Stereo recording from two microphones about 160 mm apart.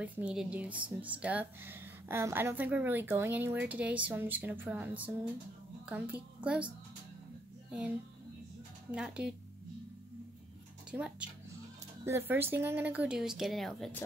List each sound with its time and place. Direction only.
0.0 s a woman's voice: 5° right (ahead or behind)
8.9 s speech: 5° right (ahead or behind)
10.9 s speech: 5° right (ahead or behind)